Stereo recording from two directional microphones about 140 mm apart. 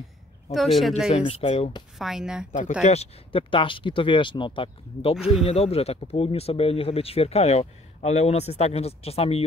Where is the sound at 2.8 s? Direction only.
50° left (ahead or behind).